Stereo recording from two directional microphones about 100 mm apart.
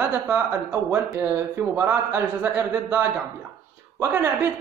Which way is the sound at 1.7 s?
20° right (ahead or behind).